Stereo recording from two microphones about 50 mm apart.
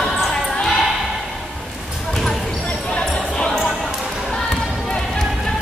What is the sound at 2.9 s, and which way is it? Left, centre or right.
Basketball bounce, centre.